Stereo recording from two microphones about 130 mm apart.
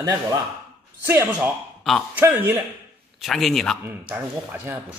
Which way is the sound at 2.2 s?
15° right (ahead or behind).